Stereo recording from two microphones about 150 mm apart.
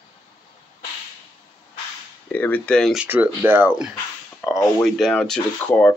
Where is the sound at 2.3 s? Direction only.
10° left (ahead or behind).